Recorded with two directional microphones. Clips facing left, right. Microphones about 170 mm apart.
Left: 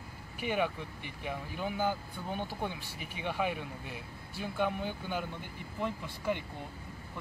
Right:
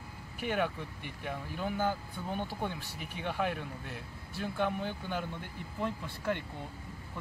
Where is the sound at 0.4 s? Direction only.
5° left (ahead or behind).